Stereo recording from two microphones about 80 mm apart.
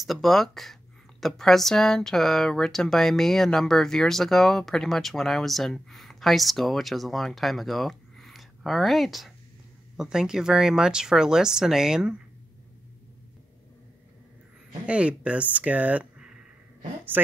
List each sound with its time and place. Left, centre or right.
0.0 s speech: centre
14.9 s a woman's voice: centre